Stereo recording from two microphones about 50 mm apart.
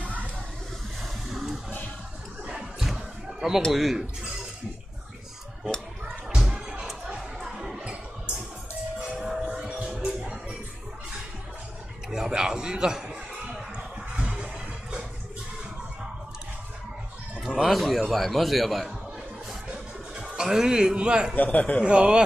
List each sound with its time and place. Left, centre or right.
1.3 s music: centre
2.8 s music: centre
3.7 s a man's voice: centre
6.3 s music: centre
7.2 s chatter: centre
9.2 s music: centre
12.1 s a sound: centre
14.1 s music: centre
17.6 s a man's voice: centre
19.7 s music: right
20.4 s a man's voice: centre
21.4 s a man's voice: left
21.8 s a man's voice: centre